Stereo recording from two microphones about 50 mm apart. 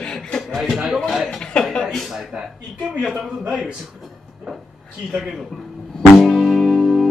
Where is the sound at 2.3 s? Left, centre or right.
Centre.